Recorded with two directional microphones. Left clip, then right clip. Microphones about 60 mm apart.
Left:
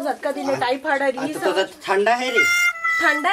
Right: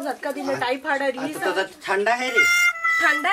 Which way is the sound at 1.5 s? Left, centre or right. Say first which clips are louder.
Left 3 dB; centre.